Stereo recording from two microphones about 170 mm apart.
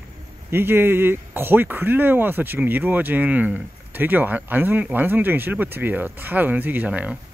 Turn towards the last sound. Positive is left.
turn(degrees=-10)  # may be behind; listen again after turning